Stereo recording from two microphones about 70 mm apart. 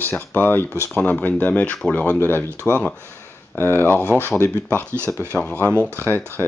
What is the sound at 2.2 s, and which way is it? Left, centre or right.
Speech, left.